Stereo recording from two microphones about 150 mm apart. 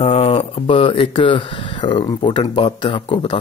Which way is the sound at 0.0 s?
40° left (ahead or behind).